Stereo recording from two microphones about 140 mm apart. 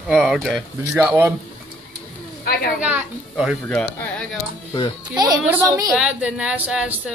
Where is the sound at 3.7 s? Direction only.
10° left (ahead or behind).